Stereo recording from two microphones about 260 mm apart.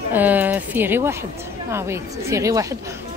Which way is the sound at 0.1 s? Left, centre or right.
Centre.